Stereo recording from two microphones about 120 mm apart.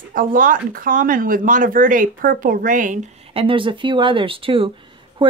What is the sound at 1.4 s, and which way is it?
Speech, 90° right.